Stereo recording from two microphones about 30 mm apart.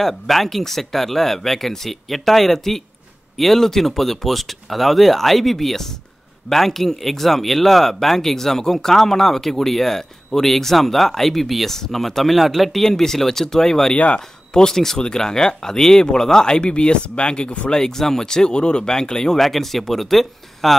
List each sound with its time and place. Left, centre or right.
0.0 s speech: centre
12.2 s speech: centre
12.8 s speech: centre; by 17.6 s left
17.6 s speech: centre
18.9 s speech: left
19.4 s speech: centre